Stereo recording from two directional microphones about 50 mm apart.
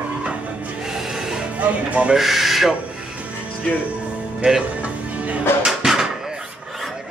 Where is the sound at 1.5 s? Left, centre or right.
Right.